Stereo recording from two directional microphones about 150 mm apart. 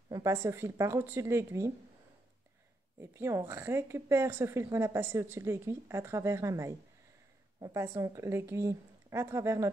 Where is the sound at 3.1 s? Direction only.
15° right (ahead or behind).